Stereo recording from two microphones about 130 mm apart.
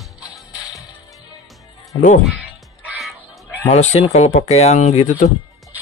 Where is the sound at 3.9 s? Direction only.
55° left (ahead or behind).